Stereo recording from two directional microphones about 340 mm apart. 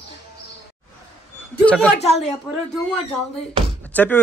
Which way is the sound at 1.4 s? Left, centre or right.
Centre.